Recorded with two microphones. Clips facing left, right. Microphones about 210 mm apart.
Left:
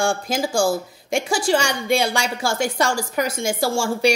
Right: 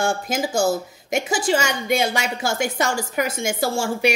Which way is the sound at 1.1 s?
5° right (ahead or behind).